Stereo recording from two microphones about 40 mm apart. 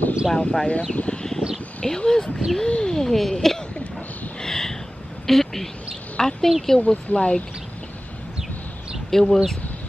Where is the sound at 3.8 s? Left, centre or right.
Left.